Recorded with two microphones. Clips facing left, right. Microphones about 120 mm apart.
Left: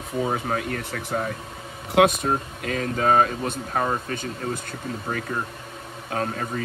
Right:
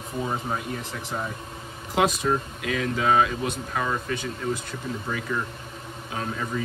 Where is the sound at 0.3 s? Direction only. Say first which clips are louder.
Left 3 dB; 65° left (ahead or behind).